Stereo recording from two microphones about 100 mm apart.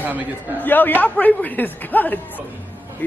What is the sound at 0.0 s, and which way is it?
Speech, 15° right (ahead or behind).